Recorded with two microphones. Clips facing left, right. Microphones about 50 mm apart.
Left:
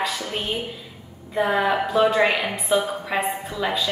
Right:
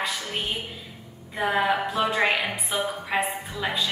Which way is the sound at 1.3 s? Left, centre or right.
Centre.